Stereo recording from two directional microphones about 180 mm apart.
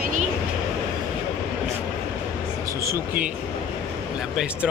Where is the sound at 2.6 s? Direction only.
15° right (ahead or behind).